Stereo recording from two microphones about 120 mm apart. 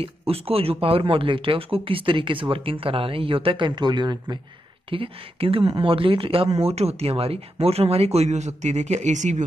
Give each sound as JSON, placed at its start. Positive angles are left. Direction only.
{"t": 0.3, "sound": "speech", "side_deg": -55}
{"t": 4.8, "sound": "speech", "side_deg": -50}